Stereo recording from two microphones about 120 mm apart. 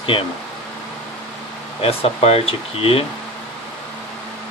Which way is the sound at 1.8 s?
55° left (ahead or behind).